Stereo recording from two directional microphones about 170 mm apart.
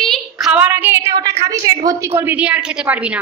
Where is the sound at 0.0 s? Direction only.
Centre (ahead or behind).